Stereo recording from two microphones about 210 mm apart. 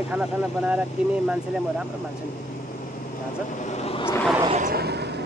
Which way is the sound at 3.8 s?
30° left (ahead or behind).